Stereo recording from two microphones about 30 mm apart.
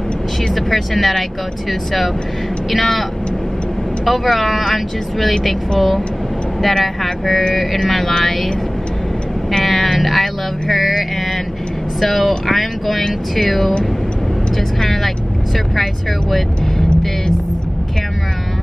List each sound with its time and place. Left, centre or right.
0.6 s speech: centre
9.7 s speech: centre
12.0 s speech: centre
14.9 s speech: centre